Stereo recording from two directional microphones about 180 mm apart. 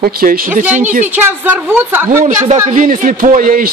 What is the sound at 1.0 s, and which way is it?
Speech, 10° right (ahead or behind).